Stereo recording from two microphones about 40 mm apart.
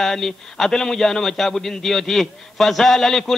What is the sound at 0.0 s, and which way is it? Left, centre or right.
A man's voice, centre.